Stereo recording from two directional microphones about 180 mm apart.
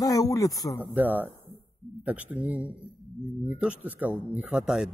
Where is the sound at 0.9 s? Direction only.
10° right (ahead or behind).